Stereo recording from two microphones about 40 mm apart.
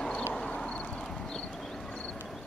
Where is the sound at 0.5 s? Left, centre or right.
Left.